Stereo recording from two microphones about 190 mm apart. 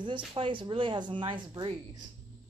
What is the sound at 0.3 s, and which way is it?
A woman's voice, 25° right (ahead or behind).